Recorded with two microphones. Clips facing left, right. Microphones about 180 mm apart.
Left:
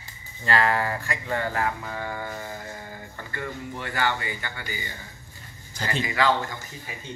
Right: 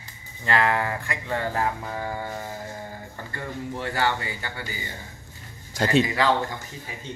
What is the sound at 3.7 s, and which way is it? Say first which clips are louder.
Speech: right 2 dB; 35° right (ahead or behind).